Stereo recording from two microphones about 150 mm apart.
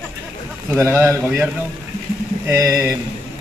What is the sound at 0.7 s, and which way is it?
Speech, 15° right (ahead or behind).